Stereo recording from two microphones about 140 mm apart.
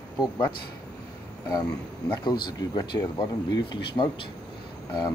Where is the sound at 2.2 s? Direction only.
35° left (ahead or behind).